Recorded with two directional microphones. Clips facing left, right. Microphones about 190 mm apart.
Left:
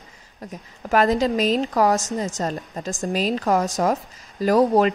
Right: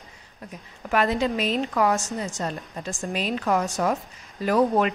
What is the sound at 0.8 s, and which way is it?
A woman's voice, 40° left (ahead or behind).